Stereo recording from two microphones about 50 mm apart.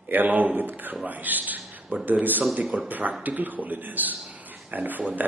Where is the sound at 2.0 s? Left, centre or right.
Right.